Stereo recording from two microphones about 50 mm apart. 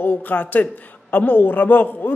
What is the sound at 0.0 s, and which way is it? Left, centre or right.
A man's voice, left.